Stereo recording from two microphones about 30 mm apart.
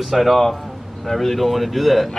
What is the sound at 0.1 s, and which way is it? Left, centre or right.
Speech, centre.